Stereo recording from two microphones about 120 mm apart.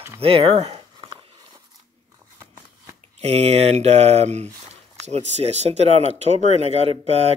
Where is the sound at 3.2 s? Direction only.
60° right (ahead or behind).